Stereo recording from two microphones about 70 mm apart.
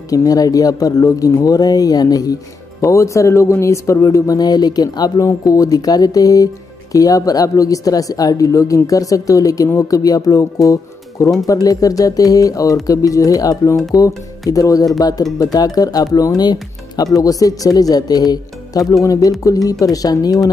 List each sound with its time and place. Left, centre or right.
0.1 s speech: left
2.8 s speech: left
5.2 s speech: left
17.1 s speech: left